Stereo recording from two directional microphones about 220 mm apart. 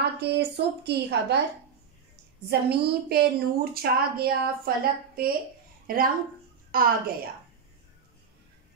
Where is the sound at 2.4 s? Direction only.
45° right (ahead or behind).